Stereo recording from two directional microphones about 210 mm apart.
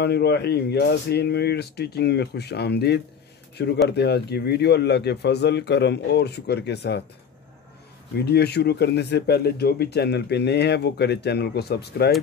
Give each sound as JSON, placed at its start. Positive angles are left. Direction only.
{"t": 0.0, "sound": "speech", "side_deg": 50}
{"t": 8.2, "sound": "speech", "side_deg": 50}